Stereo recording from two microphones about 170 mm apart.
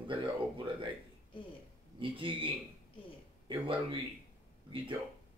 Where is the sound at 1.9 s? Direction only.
30° right (ahead or behind).